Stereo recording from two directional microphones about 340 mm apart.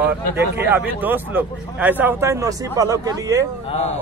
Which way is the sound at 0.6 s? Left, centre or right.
Centre.